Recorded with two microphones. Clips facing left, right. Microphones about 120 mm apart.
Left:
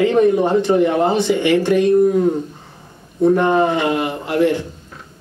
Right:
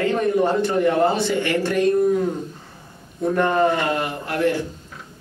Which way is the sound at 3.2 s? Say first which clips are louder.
Left 5 dB; 20° left (ahead or behind).